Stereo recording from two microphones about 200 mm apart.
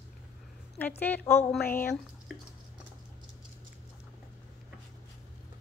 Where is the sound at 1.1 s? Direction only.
10° left (ahead or behind).